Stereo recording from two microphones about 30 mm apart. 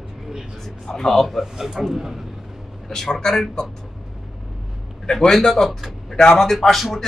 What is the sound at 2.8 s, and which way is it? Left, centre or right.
Speech, centre.